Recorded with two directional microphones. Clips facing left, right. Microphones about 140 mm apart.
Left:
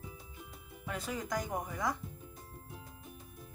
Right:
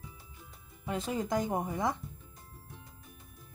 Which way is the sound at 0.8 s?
25° right (ahead or behind).